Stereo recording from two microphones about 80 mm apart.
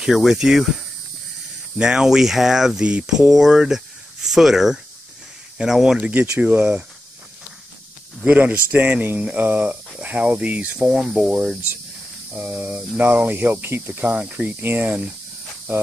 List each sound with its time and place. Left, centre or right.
0.0 s speech: centre
1.8 s speech: centre
8.2 s speech: centre